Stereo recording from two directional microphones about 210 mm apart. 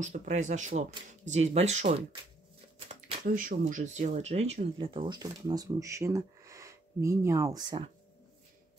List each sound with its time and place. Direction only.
0.0 s speech: 35° right (ahead or behind)
3.3 s speech: 40° right (ahead or behind); by 7.9 s 20° right (ahead or behind)